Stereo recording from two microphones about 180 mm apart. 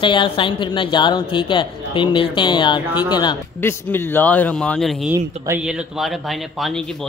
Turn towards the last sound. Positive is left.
turn(degrees=0)  # may be behind; listen again after turning